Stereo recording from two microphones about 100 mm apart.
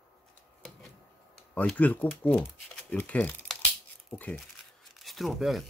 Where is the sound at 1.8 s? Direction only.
15° left (ahead or behind).